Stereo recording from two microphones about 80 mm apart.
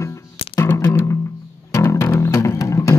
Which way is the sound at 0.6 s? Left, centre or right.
Left.